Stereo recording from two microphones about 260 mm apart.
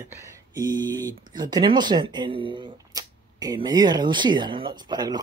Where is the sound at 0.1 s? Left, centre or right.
Centre.